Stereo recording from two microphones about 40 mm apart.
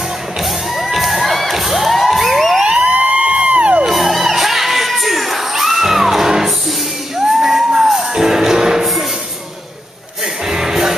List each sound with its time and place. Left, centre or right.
0.4 s music: centre
2.6 s a sound: right
3.8 s crowd: centre
7.2 s music: centre
10.4 s music: centre